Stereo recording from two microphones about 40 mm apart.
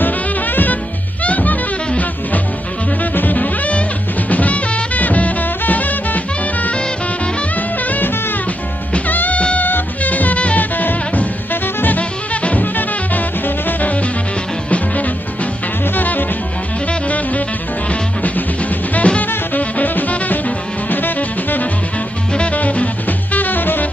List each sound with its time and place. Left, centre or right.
0.0 s music: left
1.2 s music: left
3.0 s music: left
12.0 s music: left
13.7 s music: left
15.9 s music: left
18.2 s music: left
22.5 s music: left